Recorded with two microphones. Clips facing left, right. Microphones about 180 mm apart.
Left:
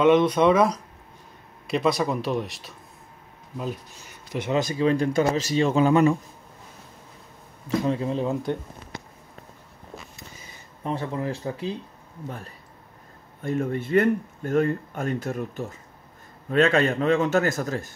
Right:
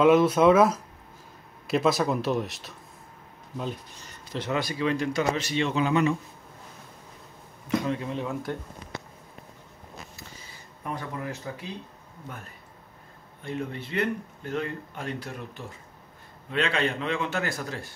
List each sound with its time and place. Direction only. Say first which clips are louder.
0.0 s speech: left 1 dB; 5° right (ahead or behind); by 4.8 s 20° left (ahead or behind)
4.8 s speech: left 4 dB; 35° left (ahead or behind)
7.6 s speech: left 3 dB; 30° left (ahead or behind)
10.8 s speech: left 6 dB; 25° left (ahead or behind)
13.4 s speech: left 7 dB; 45° left (ahead or behind)